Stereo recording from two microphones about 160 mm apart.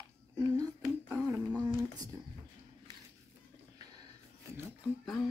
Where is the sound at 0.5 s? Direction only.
20° right (ahead or behind).